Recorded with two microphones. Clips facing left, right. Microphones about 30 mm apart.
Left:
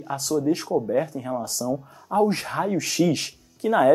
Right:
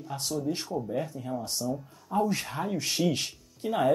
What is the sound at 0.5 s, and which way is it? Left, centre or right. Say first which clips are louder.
Speech: left 8 dB; left.